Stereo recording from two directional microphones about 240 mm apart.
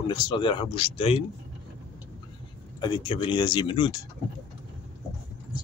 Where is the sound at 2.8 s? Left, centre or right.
Centre.